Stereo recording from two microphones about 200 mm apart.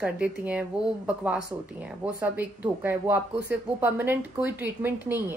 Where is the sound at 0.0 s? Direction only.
5° right (ahead or behind).